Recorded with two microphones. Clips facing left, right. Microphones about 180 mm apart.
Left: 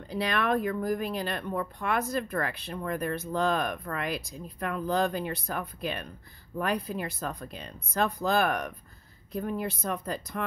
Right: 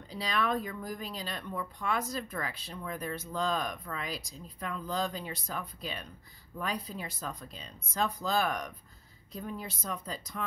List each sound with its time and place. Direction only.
0.1 s speech: 60° left (ahead or behind)